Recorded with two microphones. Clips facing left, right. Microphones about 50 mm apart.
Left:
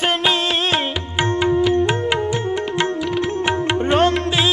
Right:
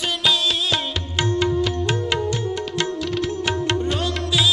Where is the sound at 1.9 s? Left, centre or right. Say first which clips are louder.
Left 3 dB; centre.